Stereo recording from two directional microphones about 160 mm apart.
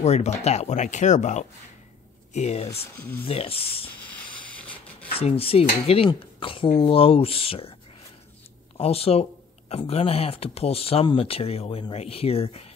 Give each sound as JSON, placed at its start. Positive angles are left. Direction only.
{"t": 0.0, "sound": "speech", "side_deg": 45}
{"t": 4.1, "sound": "a sound", "side_deg": 10}
{"t": 5.2, "sound": "speech", "side_deg": 35}
{"t": 8.7, "sound": "speech", "side_deg": 40}